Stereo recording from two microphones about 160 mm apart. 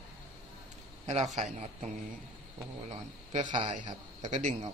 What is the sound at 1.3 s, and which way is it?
Speech, 50° right (ahead or behind).